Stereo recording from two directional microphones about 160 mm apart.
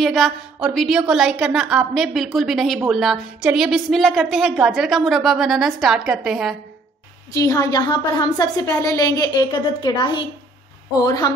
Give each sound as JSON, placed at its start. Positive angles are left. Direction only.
{"t": 0.0, "sound": "a woman's voice", "side_deg": 0}
{"t": 7.3, "sound": "a woman's voice", "side_deg": 20}